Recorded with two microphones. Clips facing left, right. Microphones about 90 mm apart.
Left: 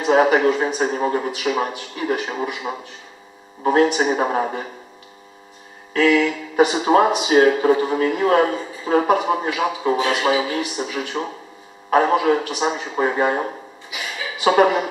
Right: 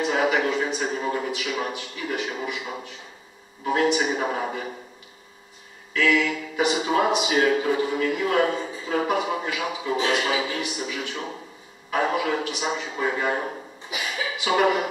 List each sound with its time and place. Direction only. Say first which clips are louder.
0.0 s speech: left 7 dB; 35° left (ahead or behind)
5.9 s speech: left 5 dB; 40° left (ahead or behind)
14.4 s speech: left 7 dB; 40° left (ahead or behind)